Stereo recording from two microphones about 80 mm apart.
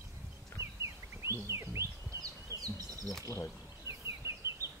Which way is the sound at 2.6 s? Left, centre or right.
Right.